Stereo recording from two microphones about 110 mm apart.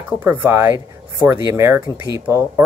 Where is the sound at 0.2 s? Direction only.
20° right (ahead or behind).